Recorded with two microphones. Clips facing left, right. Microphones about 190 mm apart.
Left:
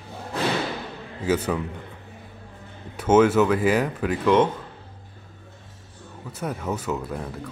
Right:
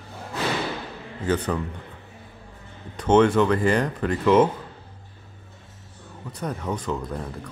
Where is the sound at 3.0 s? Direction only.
5° left (ahead or behind).